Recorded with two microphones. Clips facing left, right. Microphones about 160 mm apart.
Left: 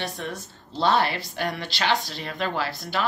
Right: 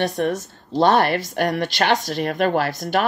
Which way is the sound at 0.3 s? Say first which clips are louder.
Right 11 dB; 50° right (ahead or behind).